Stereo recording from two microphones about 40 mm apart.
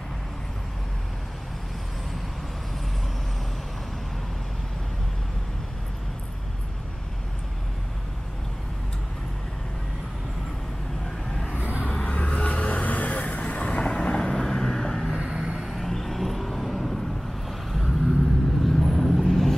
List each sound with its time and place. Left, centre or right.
11.6 s vehicle: right
11.9 s vehicle: left
14.1 s vehicle: centre
15.1 s vehicle: right
15.7 s vehicle: centre